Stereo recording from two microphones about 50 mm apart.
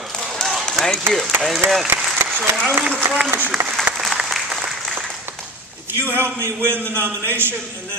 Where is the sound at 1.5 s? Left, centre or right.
Centre.